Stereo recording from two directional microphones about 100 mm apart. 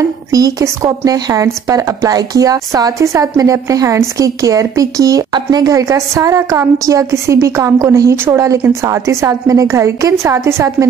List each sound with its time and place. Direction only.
0.3 s speech: 35° right (ahead or behind)